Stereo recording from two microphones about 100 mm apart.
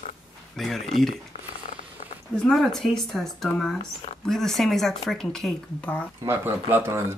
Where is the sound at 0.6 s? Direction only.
Centre (ahead or behind).